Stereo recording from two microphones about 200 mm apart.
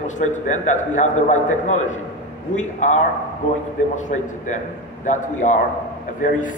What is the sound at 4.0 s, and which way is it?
A man's voice, 40° left (ahead or behind).